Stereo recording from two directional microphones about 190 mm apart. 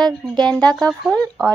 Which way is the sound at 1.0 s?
5° left (ahead or behind).